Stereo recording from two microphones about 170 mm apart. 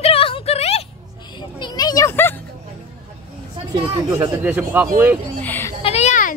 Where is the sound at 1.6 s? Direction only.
25° left (ahead or behind).